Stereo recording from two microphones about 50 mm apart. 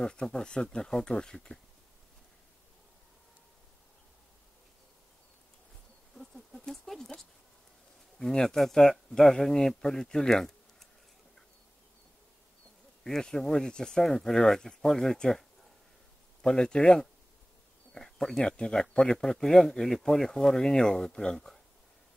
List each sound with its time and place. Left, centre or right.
0.0 s speech: centre
6.1 s patter: centre
8.2 s speech: centre
13.0 s speech: centre
16.4 s speech: centre